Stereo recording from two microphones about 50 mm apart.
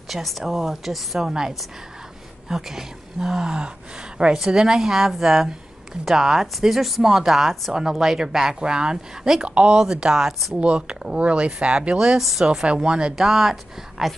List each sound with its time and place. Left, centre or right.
0.1 s a woman's voice: centre
2.4 s speech: centre
12.2 s a woman's voice: centre
12.6 s speech: centre
13.1 s speech: centre